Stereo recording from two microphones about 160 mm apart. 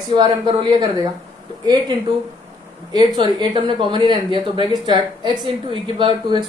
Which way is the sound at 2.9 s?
30° right (ahead or behind).